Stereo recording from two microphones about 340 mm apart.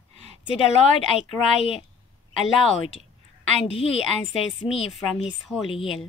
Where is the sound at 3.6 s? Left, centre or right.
Centre.